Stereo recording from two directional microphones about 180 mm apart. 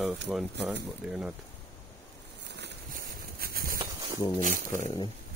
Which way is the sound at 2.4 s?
70° right (ahead or behind).